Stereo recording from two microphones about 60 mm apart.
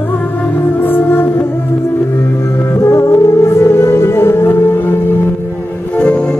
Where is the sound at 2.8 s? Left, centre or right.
Left.